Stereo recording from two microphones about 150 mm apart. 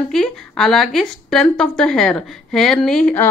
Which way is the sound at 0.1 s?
Centre (ahead or behind).